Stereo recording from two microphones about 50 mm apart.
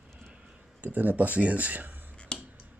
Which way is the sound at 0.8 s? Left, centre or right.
Right.